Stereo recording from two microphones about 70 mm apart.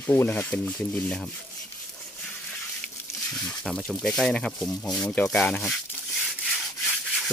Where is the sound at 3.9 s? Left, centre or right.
Centre.